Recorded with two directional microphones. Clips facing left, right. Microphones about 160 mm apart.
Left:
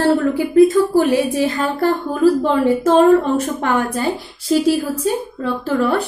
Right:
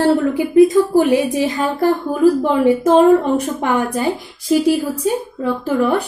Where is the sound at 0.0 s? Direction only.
20° right (ahead or behind).